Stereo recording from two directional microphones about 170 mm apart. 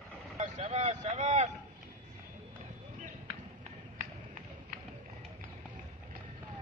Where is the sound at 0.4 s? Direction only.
40° right (ahead or behind).